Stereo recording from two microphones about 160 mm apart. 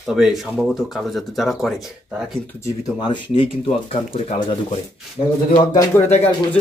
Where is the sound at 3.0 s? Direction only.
30° left (ahead or behind).